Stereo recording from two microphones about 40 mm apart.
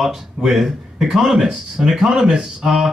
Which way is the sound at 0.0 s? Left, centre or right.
Centre.